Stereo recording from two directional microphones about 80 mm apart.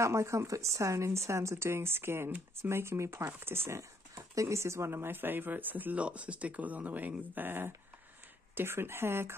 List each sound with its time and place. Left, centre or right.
0.0 s speech: right
4.1 s speech: right